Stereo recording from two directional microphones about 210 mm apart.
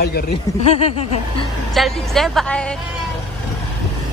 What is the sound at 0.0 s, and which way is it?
Speech, 45° left (ahead or behind).